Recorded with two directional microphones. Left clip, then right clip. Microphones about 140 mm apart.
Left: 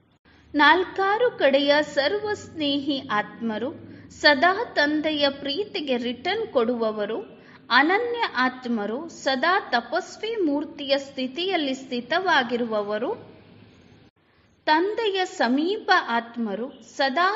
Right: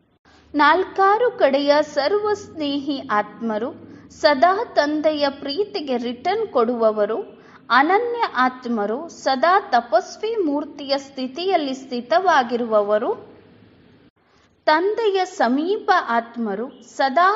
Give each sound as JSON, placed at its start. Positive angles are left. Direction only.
{"t": 0.5, "sound": "a woman's voice", "side_deg": -20}
{"t": 14.6, "sound": "a woman's voice", "side_deg": -20}